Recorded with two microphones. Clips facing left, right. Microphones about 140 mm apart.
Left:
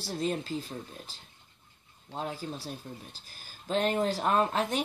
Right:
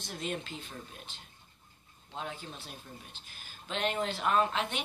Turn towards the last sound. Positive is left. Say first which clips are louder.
# left 2 dB
turn(degrees=40)  # may be behind; listen again after turning